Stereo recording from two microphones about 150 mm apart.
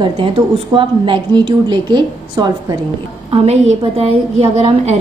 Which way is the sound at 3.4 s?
40° right (ahead or behind).